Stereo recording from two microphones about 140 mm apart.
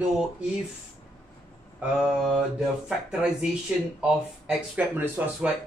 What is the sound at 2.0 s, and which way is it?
Speech, 5° right (ahead or behind).